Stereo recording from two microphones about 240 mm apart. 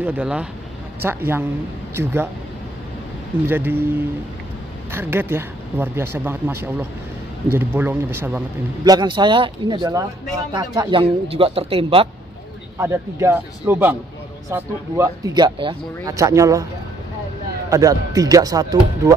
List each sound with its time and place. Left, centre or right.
0.0 s a man's voice: centre
3.4 s a man's voice: centre
4.9 s a man's voice: centre
12.7 s a man's voice: centre
17.6 s a man's voice: centre